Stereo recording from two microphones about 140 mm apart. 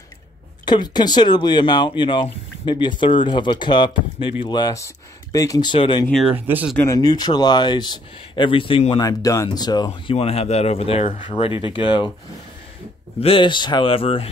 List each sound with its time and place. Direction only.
0.7 s speech: 30° left (ahead or behind)
6.2 s speech: 15° right (ahead or behind)
6.8 s speech: 25° left (ahead or behind)
9.0 s speech: 25° left (ahead or behind)
10.1 s speech: 45° left (ahead or behind)
13.2 s speech: 40° left (ahead or behind)